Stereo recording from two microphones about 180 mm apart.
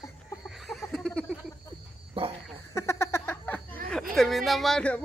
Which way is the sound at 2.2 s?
30° right (ahead or behind).